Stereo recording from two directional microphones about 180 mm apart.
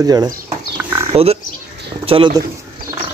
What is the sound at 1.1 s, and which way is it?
Speech, 35° right (ahead or behind).